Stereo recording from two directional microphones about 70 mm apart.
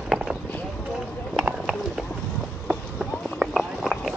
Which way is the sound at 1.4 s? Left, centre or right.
Centre.